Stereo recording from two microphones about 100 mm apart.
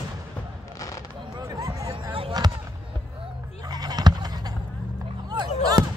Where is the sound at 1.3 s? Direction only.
40° right (ahead or behind).